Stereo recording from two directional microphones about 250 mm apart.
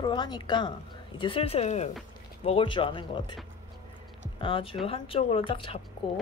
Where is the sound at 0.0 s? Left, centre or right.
Centre.